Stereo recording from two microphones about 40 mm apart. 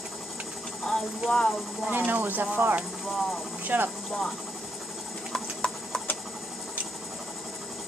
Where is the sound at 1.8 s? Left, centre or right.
Right.